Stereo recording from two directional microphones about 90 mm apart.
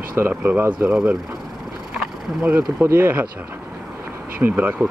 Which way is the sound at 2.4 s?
20° right (ahead or behind).